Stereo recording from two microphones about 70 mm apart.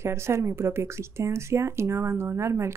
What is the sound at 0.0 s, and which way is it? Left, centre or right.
Speech, right.